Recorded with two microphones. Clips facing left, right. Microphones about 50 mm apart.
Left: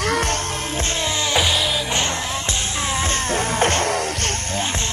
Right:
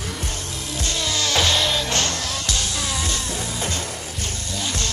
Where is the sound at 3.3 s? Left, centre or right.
Left.